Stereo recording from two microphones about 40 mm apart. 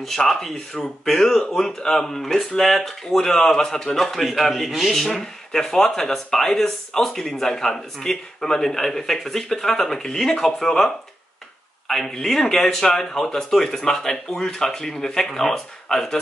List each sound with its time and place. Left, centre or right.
0.2 s speech: centre
12.1 s speech: centre